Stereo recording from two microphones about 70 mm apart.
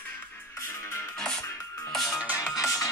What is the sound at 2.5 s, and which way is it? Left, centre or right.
Music, left.